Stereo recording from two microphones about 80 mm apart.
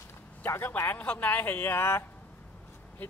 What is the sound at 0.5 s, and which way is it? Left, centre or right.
Speech, left.